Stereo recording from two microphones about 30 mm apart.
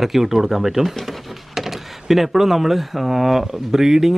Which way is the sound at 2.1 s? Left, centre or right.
Centre.